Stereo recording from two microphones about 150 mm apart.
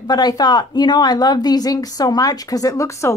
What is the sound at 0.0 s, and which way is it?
Speech, 25° left (ahead or behind).